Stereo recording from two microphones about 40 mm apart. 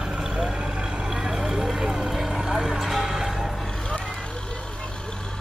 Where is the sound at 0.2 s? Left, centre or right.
Right.